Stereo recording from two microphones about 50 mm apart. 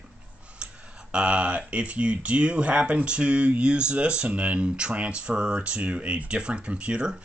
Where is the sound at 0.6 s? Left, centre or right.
Centre.